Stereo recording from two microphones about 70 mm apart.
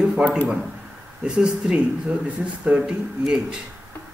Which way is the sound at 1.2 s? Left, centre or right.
Centre.